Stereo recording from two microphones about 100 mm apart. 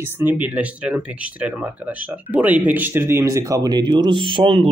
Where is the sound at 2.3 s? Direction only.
15° right (ahead or behind).